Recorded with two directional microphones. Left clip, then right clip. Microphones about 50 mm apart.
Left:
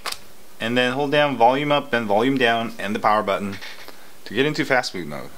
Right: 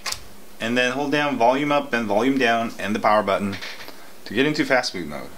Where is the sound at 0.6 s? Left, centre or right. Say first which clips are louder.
Left 1 dB; right.